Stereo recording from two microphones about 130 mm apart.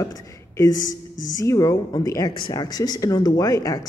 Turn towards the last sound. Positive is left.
turn(degrees=25)  # may be behind; listen again after turning